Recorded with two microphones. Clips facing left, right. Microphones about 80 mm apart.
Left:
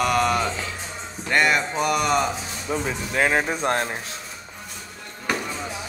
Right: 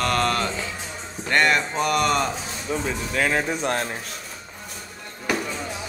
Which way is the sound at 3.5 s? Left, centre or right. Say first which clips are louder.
Left 1 dB; left.